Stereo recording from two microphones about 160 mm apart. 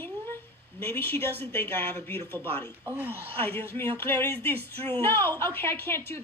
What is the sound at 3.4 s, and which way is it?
Speech, 15° left (ahead or behind).